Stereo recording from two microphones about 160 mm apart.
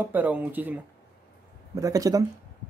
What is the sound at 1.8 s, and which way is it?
Speech, 20° right (ahead or behind).